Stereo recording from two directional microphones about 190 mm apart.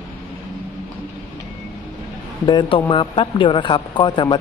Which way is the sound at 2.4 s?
25° left (ahead or behind).